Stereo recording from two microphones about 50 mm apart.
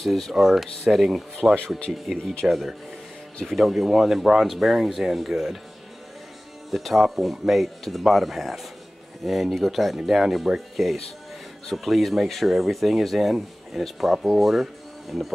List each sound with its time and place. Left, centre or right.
0.0 s speech: centre
1.4 s speech: right
2.4 s speech: centre
6.7 s speech: centre